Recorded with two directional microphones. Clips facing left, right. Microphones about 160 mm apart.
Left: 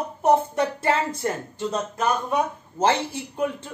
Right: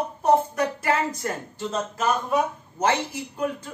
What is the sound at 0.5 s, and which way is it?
Speech, 30° left (ahead or behind).